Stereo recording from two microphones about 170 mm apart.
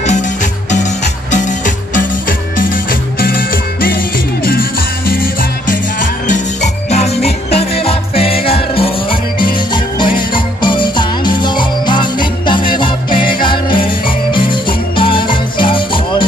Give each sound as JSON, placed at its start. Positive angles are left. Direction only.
{"t": 2.0, "sound": "music", "side_deg": 55}
{"t": 13.4, "sound": "jingle bell", "side_deg": 30}
{"t": 14.3, "sound": "music", "side_deg": 30}